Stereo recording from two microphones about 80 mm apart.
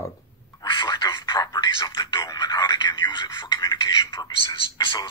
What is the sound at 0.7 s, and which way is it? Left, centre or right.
Telephone, left.